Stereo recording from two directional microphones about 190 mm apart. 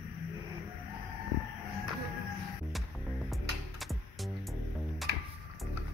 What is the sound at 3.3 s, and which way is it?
Music, centre (ahead or behind).